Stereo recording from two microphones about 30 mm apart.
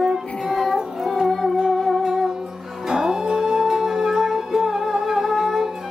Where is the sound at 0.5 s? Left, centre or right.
Centre.